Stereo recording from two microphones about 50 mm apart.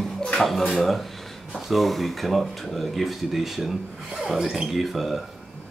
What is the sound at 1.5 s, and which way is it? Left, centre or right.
Speech, centre.